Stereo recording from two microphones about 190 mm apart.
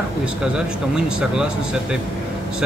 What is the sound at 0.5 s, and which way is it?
Speech, 5° right (ahead or behind).